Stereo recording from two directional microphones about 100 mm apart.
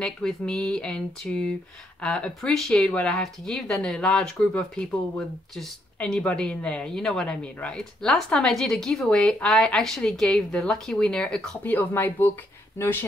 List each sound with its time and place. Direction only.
0.0 s speech: 10° left (ahead or behind)